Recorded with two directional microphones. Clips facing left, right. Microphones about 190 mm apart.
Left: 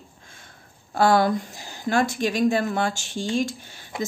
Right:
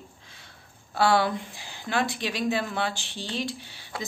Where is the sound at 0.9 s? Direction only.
45° left (ahead or behind).